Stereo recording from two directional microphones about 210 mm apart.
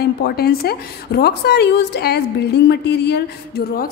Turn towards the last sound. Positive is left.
turn(degrees=50)  # may be behind; listen again after turning